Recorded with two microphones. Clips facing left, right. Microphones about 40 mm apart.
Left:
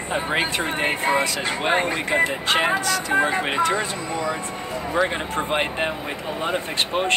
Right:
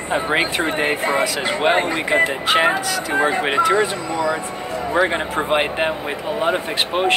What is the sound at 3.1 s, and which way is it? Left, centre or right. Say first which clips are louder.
Speech: right 4 dB; right.